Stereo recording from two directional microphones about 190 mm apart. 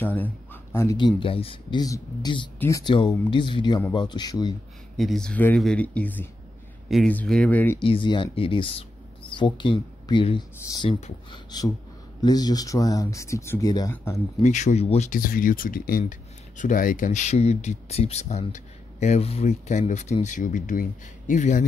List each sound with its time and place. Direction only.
0.0 s speech: 10° left (ahead or behind)
4.9 s speech: centre (ahead or behind)
7.8 s speech: 25° left (ahead or behind)
10.9 s speech: 35° left (ahead or behind)
11.5 s speech: 20° left (ahead or behind)
14.4 s speech: 40° left (ahead or behind)
15.1 s speech: 50° left (ahead or behind)